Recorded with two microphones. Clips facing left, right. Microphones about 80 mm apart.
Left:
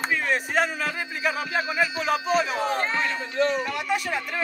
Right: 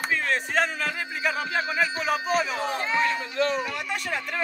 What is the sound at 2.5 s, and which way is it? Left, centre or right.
Speech, left.